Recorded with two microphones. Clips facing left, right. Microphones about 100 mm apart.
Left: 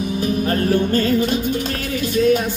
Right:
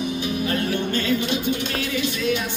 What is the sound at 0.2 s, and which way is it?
Music, 45° left (ahead or behind).